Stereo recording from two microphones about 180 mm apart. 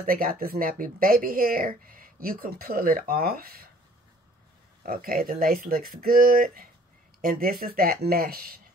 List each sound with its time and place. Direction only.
0.0 s speech: 55° right (ahead or behind)
4.8 s speech: 55° right (ahead or behind)